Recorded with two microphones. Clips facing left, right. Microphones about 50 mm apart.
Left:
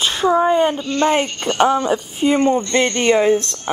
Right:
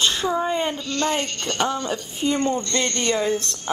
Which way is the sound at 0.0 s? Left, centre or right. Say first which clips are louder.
Left 4 dB; centre.